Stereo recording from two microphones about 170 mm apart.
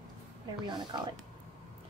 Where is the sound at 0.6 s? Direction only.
25° right (ahead or behind).